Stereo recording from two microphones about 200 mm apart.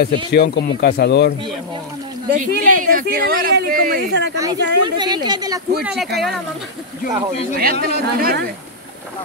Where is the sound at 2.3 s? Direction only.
45° right (ahead or behind).